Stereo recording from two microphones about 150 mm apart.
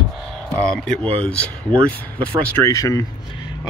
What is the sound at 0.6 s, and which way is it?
Speech, 5° left (ahead or behind).